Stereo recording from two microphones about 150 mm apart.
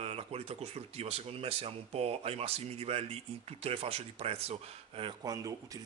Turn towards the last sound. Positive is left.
turn(degrees=-25)  # may be behind; listen again after turning